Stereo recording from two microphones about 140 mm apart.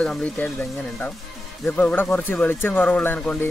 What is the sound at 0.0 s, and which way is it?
Speech, 10° left (ahead or behind).